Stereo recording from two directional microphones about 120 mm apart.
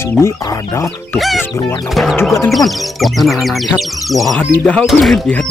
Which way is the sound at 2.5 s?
Centre (ahead or behind).